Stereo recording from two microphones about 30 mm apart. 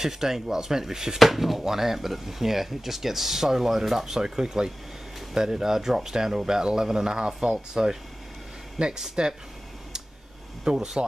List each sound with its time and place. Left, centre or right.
0.0 s speech: centre
1.2 s speech: centre; by 9.3 s right
10.6 s speech: right